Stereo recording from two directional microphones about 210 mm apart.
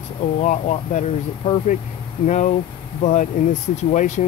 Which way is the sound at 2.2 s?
35° left (ahead or behind).